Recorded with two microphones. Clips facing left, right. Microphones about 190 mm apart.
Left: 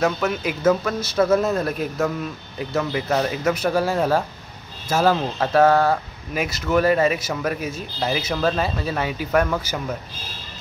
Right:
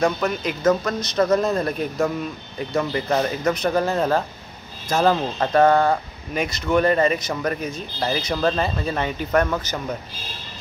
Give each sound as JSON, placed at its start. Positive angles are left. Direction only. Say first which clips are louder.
{"t": 0.0, "sound": "speech", "louder": "even", "side_deg": 5}